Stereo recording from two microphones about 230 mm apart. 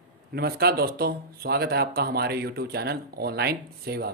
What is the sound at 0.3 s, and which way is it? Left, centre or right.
Speech, right.